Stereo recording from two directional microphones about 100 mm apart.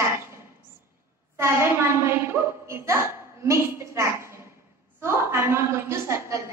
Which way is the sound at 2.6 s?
25° right (ahead or behind).